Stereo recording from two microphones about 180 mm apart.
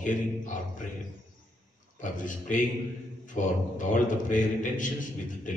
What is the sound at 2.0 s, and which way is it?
A man's voice, 45° left (ahead or behind).